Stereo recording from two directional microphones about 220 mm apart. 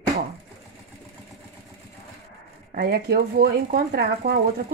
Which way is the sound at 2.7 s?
45° right (ahead or behind).